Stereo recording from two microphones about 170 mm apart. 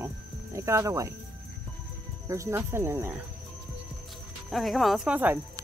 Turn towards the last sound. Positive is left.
turn(degrees=-10)  # may be behind; listen again after turning